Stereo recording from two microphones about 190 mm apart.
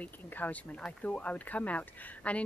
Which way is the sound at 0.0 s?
10° left (ahead or behind).